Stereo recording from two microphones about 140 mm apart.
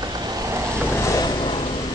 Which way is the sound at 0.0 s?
30° right (ahead or behind).